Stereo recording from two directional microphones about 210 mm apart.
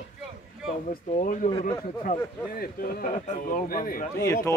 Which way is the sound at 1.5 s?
25° left (ahead or behind).